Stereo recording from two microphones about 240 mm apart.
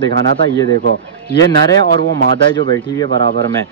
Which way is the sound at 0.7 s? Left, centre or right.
Right.